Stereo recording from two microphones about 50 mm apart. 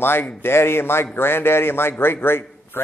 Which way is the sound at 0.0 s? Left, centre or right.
Left.